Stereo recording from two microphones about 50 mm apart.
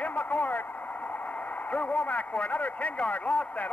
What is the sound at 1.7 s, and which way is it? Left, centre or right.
A man's voice, left.